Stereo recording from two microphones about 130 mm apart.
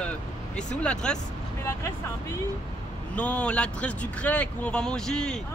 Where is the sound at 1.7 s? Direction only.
20° left (ahead or behind).